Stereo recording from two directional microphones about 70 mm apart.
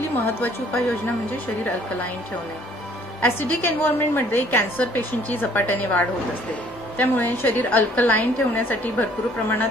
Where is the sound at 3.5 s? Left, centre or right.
Left.